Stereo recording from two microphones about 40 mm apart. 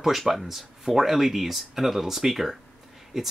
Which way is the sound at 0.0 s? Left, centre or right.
Centre.